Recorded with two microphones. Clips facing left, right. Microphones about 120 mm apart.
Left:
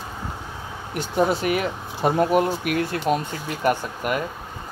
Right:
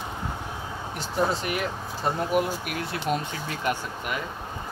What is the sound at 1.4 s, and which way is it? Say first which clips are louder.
Speech: left 6 dB; 75° left (ahead or behind).